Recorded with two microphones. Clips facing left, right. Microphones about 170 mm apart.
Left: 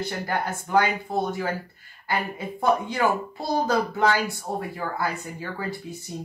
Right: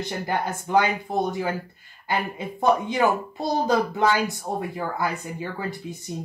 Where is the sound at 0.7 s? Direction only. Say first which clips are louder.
Right 1 dB; 20° right (ahead or behind).